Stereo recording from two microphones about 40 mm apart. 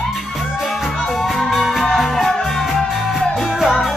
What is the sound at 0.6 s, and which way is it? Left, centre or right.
Music, centre.